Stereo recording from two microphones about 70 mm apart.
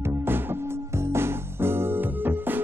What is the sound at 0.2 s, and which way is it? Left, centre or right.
Music, right.